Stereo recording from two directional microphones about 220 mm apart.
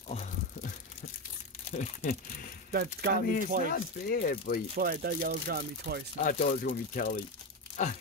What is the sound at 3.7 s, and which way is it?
Speech, 45° left (ahead or behind).